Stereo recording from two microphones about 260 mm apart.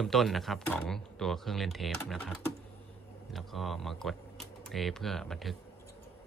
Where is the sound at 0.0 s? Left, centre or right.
Centre.